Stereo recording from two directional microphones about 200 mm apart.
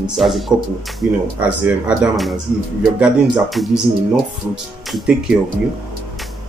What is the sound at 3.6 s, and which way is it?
Speech, centre (ahead or behind).